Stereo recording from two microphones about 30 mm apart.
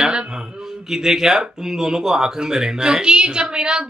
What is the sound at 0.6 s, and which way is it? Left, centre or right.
Speech, centre.